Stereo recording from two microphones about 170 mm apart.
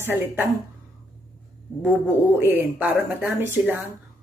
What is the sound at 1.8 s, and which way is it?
Speech, 10° right (ahead or behind).